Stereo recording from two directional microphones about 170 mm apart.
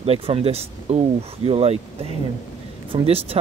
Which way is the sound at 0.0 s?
35° right (ahead or behind).